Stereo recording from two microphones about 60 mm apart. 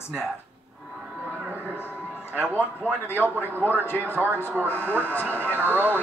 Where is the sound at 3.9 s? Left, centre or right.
Left.